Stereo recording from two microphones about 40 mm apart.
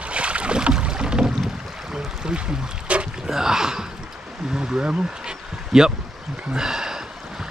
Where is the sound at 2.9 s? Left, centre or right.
Right.